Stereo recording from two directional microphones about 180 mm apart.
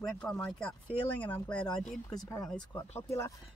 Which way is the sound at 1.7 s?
5° left (ahead or behind).